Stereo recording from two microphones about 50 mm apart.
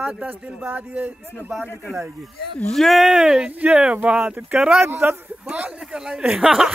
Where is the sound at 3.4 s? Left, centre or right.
Right.